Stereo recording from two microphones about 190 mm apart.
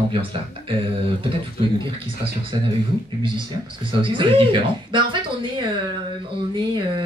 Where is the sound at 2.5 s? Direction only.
25° right (ahead or behind).